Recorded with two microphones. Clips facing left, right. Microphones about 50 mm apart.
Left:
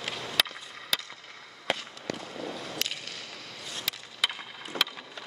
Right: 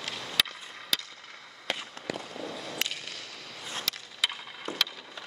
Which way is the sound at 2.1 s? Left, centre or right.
Centre.